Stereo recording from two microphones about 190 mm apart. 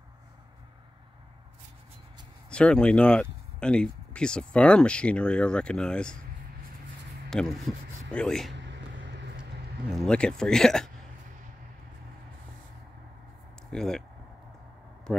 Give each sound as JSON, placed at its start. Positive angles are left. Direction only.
{"t": 2.5, "sound": "speech", "side_deg": 5}
{"t": 7.2, "sound": "speech", "side_deg": 0}
{"t": 8.6, "sound": "a sound", "side_deg": -65}
{"t": 9.8, "sound": "speech", "side_deg": 0}
{"t": 13.7, "sound": "speech", "side_deg": 5}
{"t": 15.1, "sound": "speech", "side_deg": 5}